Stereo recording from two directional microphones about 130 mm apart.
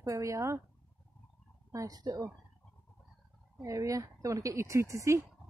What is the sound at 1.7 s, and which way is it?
Speech, 25° right (ahead or behind).